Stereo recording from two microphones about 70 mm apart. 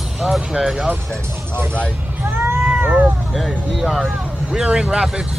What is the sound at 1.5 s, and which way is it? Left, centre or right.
Speech, right.